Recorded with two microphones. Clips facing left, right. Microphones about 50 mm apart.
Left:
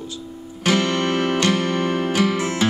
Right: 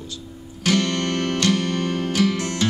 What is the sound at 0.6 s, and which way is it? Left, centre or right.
Music, centre.